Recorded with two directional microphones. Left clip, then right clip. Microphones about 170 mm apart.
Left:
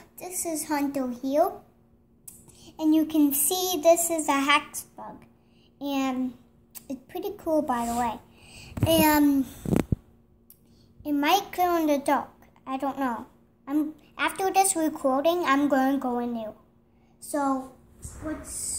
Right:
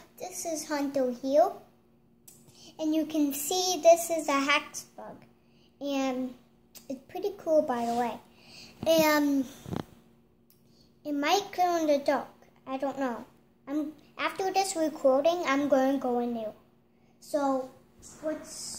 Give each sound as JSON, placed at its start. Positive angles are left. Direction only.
{"t": 0.2, "sound": "speech", "side_deg": -15}
{"t": 2.5, "sound": "speech", "side_deg": -10}
{"t": 5.8, "sound": "a sound", "side_deg": -15}
{"t": 6.7, "sound": "a woman's voice", "side_deg": -15}
{"t": 11.0, "sound": "a child's voice", "side_deg": -15}